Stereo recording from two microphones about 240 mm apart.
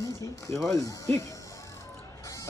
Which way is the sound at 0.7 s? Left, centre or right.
Centre.